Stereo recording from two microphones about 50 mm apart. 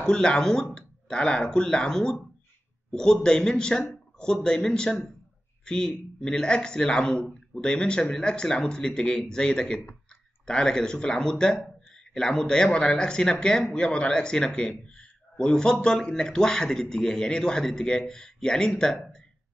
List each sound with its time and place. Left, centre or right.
0.0 s speech: centre